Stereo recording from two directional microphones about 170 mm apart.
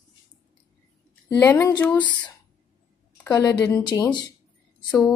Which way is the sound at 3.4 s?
20° left (ahead or behind).